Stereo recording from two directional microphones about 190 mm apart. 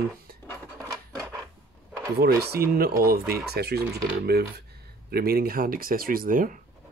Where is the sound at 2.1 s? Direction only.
55° right (ahead or behind).